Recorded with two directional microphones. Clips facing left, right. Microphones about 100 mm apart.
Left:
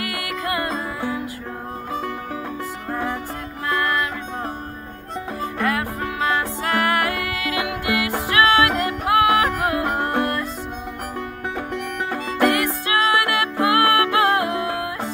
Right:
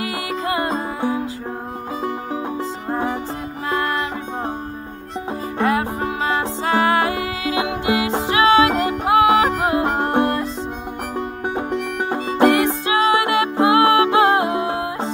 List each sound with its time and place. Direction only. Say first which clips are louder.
0.0 s music: right 3 dB; 25° right (ahead or behind)
3.6 s music: even; 30° right (ahead or behind)
5.6 s music: right 5 dB; 25° right (ahead or behind)
12.1 s music: right 4 dB; 25° right (ahead or behind)